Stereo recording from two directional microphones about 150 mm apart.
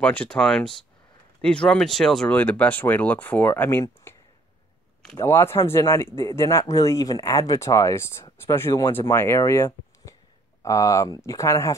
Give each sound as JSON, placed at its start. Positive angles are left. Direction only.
{"t": 0.0, "sound": "speech", "side_deg": 10}
{"t": 4.1, "sound": "a sound", "side_deg": 15}
{"t": 5.1, "sound": "speech", "side_deg": 20}